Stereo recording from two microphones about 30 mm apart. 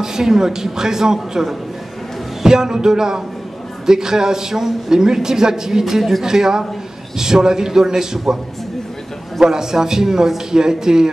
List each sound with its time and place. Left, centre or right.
0.0 s a man's voice: centre
9.4 s a man's voice: centre